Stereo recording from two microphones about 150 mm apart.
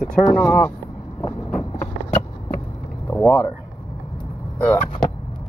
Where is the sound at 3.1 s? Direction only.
10° left (ahead or behind).